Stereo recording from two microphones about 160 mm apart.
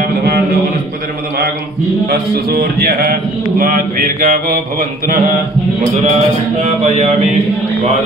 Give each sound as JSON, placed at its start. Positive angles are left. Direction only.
{"t": 2.0, "sound": "a man's voice", "side_deg": -70}
{"t": 6.8, "sound": "mantra", "side_deg": -45}